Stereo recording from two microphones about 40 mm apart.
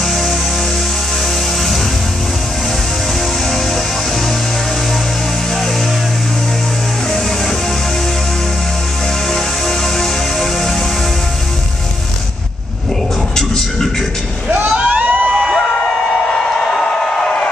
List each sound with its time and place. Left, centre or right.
9.3 s music: centre
14.9 s crowd: right
16.2 s a sound: centre